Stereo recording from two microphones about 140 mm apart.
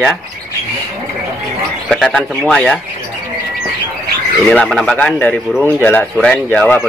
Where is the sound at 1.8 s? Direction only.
5° left (ahead or behind).